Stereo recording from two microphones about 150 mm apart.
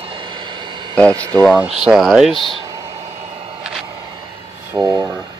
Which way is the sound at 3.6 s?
5° right (ahead or behind).